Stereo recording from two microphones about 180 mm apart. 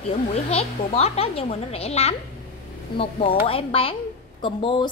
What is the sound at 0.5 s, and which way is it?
A woman's voice, 35° left (ahead or behind).